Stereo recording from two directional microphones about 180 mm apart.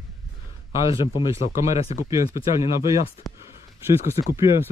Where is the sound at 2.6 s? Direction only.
30° left (ahead or behind).